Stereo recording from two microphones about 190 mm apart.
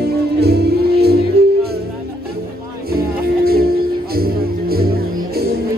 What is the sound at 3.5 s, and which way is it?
Music, 55° right (ahead or behind).